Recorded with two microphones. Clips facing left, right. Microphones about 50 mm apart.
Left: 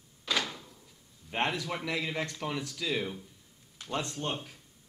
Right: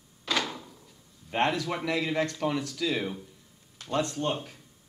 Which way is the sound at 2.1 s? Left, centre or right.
Centre.